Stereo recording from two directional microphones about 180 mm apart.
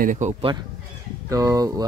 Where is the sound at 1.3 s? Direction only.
20° right (ahead or behind).